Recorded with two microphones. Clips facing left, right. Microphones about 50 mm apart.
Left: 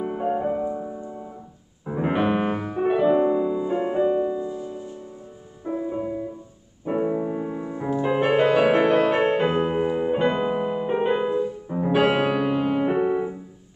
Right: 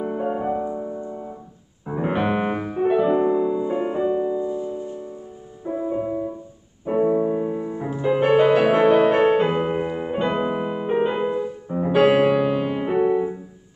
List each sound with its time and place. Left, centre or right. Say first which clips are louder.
0.0 s music: even; centre
4.4 s music: right 4 dB; right
5.7 s music: right 2 dB; centre
8.0 s music: right 3 dB; centre
8.5 s music: right 2 dB; centre
9.8 s piano: left 3 dB; centre
10.3 s music: even; centre
12.0 s piano: right 6 dB; centre